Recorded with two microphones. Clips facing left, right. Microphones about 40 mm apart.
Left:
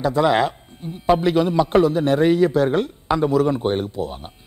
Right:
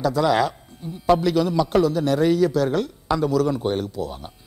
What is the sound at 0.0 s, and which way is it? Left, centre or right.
A man's voice, left.